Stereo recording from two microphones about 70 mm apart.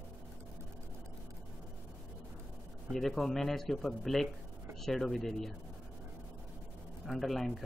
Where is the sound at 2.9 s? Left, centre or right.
Centre.